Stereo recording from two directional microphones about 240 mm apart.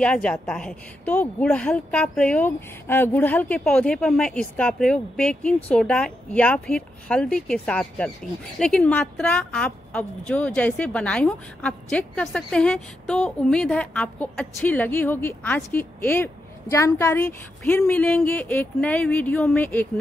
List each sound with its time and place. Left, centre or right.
0.0 s a woman's voice: centre